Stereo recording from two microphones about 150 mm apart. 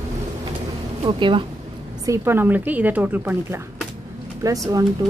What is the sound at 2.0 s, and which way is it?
A woman's voice, 15° right (ahead or behind).